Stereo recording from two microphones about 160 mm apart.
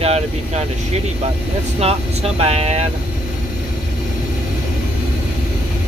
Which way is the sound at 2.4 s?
40° right (ahead or behind).